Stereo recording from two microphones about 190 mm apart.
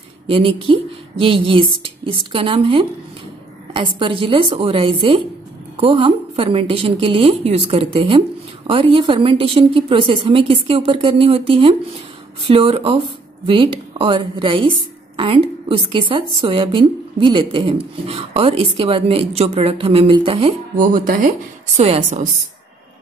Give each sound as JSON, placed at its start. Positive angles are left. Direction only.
{"t": 0.3, "sound": "a woman's voice", "side_deg": -30}
{"t": 20.7, "sound": "speech", "side_deg": -45}
{"t": 21.7, "sound": "a woman's voice", "side_deg": -30}